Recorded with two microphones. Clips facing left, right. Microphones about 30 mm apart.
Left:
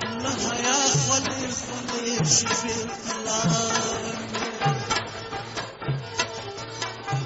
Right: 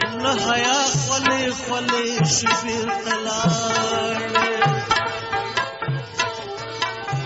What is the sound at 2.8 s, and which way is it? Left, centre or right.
Music, right.